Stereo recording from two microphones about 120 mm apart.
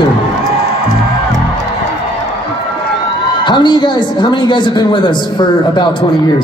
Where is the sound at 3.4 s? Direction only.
40° left (ahead or behind).